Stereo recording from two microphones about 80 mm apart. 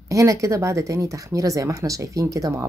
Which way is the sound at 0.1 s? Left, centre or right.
Right.